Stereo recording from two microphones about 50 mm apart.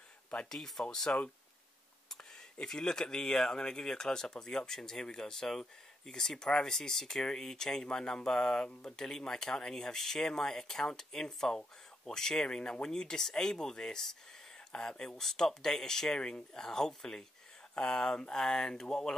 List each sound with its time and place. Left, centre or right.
0.5 s speech: centre